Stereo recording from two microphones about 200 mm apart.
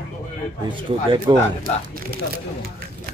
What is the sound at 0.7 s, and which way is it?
Speech, 25° right (ahead or behind).